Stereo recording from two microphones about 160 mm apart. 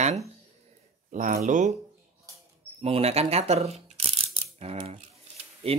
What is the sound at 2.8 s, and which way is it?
Speech, 40° right (ahead or behind).